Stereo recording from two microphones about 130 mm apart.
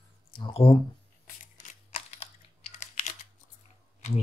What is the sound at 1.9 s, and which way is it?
Computer keyboard, 55° left (ahead or behind).